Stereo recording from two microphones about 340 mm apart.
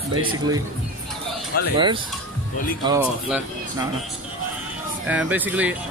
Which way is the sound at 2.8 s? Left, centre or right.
Centre.